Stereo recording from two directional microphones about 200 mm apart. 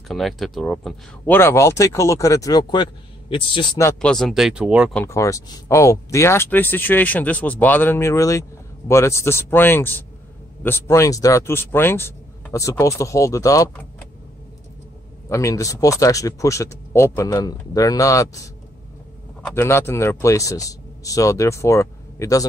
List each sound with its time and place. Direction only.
0.1 s speech: centre (ahead or behind)
4.1 s speech: centre (ahead or behind)
4.9 s speech: 15° left (ahead or behind)
15.2 s speech: 15° left (ahead or behind)
19.4 s speech: 10° left (ahead or behind)